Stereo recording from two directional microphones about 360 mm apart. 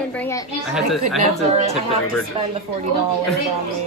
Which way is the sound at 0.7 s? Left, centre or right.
Centre.